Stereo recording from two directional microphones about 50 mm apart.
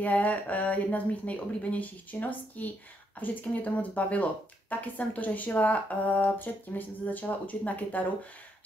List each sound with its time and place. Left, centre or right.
0.0 s speech: left